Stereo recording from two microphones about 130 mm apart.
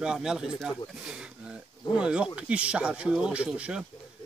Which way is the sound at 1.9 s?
5° right (ahead or behind).